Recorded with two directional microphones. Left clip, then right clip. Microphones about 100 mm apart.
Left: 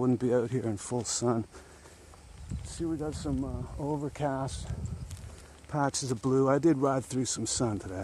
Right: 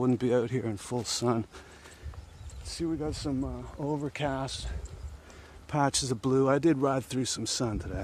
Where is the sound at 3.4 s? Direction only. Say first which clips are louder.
Right 1 dB; 15° right (ahead or behind).